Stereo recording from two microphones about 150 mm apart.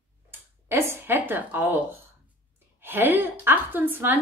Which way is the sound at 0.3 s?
15° right (ahead or behind).